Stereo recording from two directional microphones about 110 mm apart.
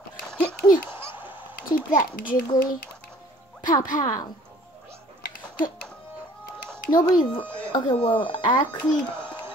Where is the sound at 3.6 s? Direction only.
35° left (ahead or behind).